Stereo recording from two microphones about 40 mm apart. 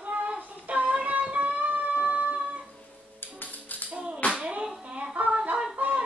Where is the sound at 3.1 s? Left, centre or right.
Left.